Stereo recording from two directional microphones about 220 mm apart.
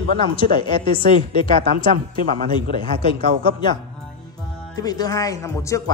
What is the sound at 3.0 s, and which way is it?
Speech, 20° left (ahead or behind).